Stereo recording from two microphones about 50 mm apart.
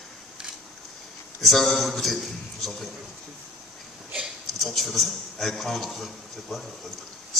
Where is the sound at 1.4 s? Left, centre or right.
Centre.